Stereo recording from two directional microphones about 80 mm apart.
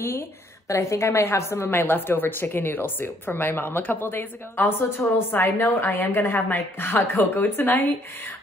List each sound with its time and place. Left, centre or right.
0.7 s a woman's voice: left